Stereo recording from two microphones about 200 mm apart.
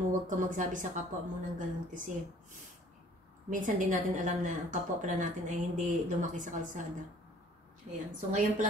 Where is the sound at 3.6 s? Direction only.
40° right (ahead or behind).